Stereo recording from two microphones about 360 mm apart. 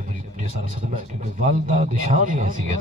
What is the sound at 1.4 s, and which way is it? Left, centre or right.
A man's voice, centre.